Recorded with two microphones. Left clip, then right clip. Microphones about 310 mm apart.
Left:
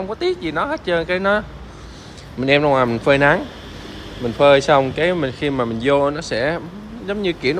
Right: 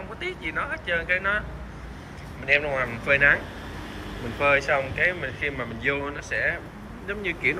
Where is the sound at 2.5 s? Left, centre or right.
Left.